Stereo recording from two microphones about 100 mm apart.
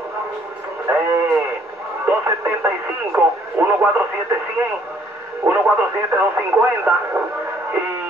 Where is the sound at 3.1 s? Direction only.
20° right (ahead or behind).